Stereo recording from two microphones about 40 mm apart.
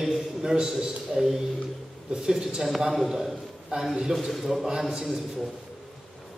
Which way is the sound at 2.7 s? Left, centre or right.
Centre.